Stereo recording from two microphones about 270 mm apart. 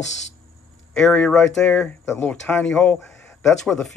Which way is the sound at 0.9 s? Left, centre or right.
Centre.